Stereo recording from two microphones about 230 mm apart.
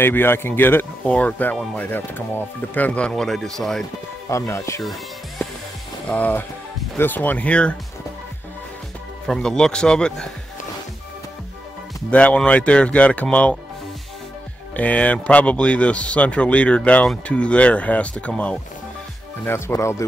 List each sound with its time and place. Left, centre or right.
0.0 s speech: centre
4.3 s speech: centre
6.0 s speech: centre
9.3 s speech: centre
12.1 s speech: centre
14.8 s speech: centre